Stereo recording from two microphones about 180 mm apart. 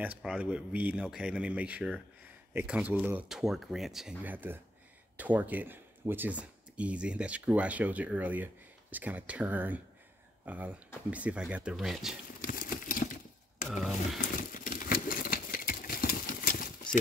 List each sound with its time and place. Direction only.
0.0 s speech: 5° right (ahead or behind)
12.4 s a sound: 50° left (ahead or behind)
13.7 s speech: centre (ahead or behind)
14.3 s engine: 50° left (ahead or behind)